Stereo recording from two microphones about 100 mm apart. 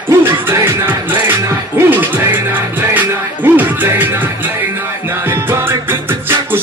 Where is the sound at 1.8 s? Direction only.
20° right (ahead or behind).